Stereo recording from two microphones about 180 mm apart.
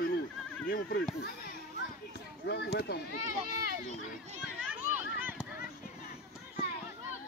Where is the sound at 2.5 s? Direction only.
65° left (ahead or behind).